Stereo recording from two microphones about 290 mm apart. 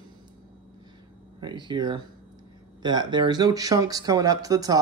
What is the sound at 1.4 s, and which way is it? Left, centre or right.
Speech, centre.